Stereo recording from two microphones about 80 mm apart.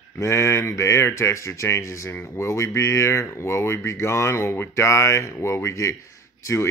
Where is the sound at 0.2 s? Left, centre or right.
Left.